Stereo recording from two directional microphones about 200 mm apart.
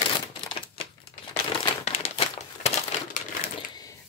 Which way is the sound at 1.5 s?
30° left (ahead or behind).